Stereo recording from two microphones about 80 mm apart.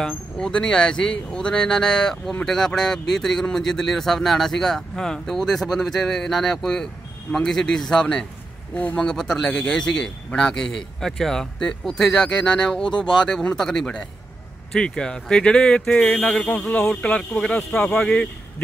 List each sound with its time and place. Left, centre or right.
0.0 s speech: centre
9.0 s speech: centre